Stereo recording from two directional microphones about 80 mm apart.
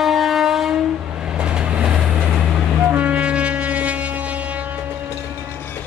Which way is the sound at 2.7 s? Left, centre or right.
Centre.